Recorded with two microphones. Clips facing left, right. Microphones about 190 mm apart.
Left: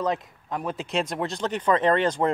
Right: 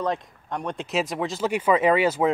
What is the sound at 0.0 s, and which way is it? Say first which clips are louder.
Speech: even; 5° left (ahead or behind).